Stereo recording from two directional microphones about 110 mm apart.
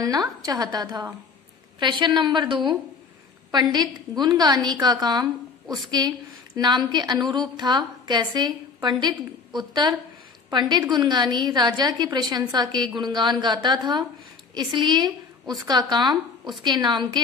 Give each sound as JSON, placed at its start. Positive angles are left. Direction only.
{"t": 0.0, "sound": "a woman's voice", "side_deg": -35}